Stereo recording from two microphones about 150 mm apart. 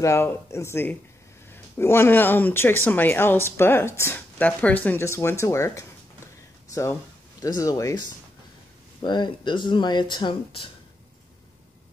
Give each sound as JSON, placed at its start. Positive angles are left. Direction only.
{"t": 0.0, "sound": "speech", "side_deg": 15}
{"t": 9.0, "sound": "speech", "side_deg": 30}